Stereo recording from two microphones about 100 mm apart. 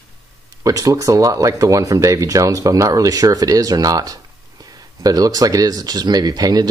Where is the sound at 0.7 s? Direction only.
35° right (ahead or behind).